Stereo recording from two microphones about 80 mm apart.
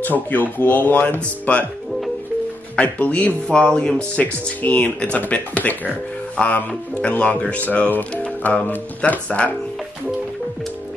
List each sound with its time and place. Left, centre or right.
0.0 s speech: left
2.7 s speech: centre